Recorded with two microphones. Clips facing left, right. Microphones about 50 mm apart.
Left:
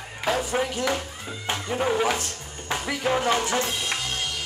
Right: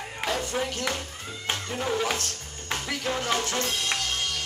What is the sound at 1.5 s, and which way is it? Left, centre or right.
Speech, centre.